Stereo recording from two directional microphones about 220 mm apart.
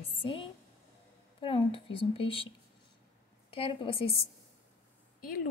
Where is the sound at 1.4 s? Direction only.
25° left (ahead or behind).